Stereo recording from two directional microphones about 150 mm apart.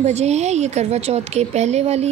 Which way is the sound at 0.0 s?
45° right (ahead or behind).